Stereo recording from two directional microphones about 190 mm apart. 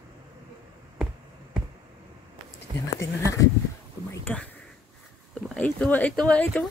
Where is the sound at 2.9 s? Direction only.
15° left (ahead or behind).